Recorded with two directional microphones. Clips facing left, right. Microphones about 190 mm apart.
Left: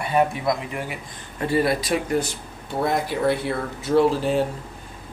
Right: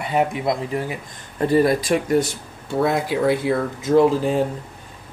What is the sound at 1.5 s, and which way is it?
Speech, 45° right (ahead or behind).